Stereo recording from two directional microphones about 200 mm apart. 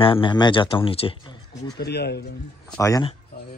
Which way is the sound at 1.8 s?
55° left (ahead or behind).